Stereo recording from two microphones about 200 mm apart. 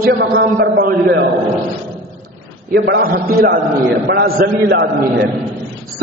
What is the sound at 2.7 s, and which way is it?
A man's voice, 55° right (ahead or behind).